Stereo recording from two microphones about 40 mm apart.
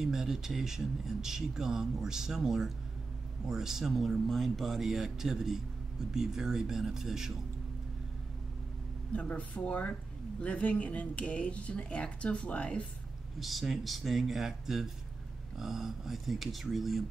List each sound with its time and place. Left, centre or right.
0.0 s speech: centre
9.3 s speech: left
13.4 s speech: centre